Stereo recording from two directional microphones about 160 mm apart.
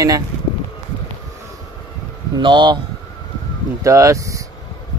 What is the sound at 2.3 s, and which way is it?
Speech, 30° right (ahead or behind).